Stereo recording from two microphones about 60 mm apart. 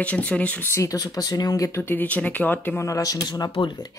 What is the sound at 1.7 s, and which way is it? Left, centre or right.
Speech, left.